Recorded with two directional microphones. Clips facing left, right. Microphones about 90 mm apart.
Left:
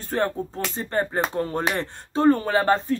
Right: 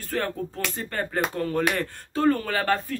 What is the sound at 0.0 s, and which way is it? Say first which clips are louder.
Speech: left 4 dB; 25° left (ahead or behind).